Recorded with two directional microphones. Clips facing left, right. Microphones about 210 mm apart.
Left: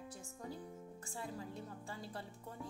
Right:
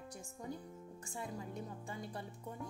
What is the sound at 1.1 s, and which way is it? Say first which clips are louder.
A woman's voice: right 2 dB; 15° right (ahead or behind).